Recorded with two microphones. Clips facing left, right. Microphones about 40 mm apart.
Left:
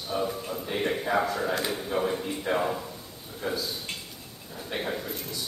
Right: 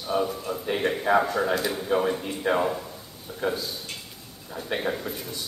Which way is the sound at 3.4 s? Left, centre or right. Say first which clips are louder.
Right 3 dB; right.